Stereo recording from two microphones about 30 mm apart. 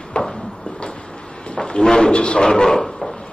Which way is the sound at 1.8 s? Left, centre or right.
Left.